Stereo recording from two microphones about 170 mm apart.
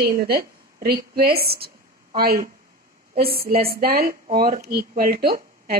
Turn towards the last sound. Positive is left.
turn(degrees=-60)  # may be behind; listen again after turning